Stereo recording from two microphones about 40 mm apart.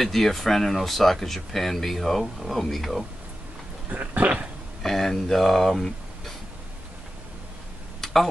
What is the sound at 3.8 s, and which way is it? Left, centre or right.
Dog, right.